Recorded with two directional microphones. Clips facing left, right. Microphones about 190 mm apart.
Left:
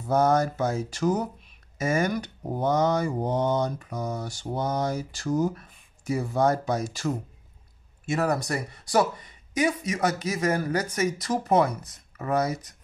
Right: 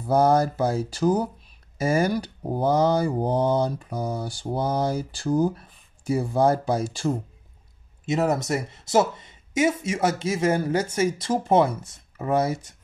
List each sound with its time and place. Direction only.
0.0 s speech: 35° right (ahead or behind)